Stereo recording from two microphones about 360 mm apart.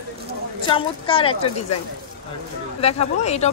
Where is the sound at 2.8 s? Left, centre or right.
Centre.